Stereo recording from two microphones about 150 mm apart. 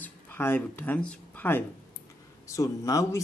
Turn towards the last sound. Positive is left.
turn(degrees=20)  # may be behind; listen again after turning